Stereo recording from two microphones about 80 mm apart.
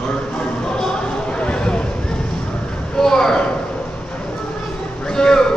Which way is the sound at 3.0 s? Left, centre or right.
Centre.